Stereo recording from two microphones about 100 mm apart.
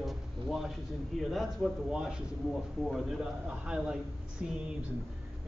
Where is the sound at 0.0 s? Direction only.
5° right (ahead or behind).